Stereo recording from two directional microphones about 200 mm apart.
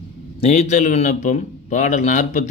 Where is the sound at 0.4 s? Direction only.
35° left (ahead or behind).